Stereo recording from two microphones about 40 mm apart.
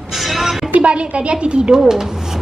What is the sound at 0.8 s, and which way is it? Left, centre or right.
Speech, right.